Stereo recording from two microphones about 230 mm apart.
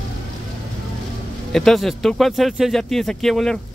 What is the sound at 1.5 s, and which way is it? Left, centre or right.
Speech, centre.